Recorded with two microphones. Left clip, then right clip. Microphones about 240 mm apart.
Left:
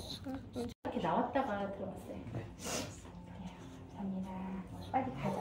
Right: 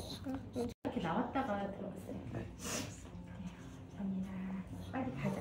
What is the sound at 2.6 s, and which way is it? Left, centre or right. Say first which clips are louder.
Snort: left 2 dB; centre.